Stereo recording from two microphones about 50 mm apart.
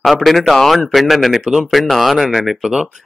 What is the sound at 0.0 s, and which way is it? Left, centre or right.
Speech, centre.